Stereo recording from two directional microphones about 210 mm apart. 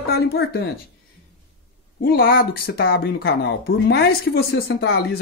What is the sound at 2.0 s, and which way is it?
Speech, 45° left (ahead or behind).